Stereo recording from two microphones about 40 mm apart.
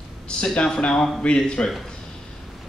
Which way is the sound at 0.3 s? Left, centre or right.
Left.